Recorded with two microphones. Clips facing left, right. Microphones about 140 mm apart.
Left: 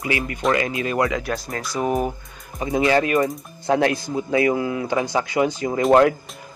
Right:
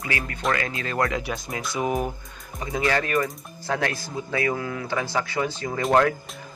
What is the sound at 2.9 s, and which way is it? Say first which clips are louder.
Speech: left 6 dB; 20° left (ahead or behind).